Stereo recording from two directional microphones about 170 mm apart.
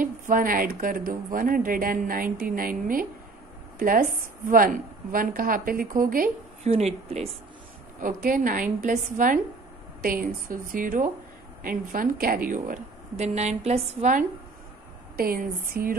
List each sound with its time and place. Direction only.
0.0 s a woman's voice: 55° right (ahead or behind)
6.7 s speech: 35° right (ahead or behind)
8.0 s a woman's voice: 50° right (ahead or behind)
15.1 s a woman's voice: 60° right (ahead or behind)